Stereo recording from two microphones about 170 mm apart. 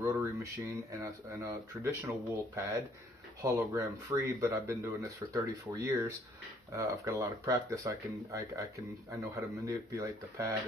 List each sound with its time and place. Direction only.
0.0 s speech: 15° right (ahead or behind)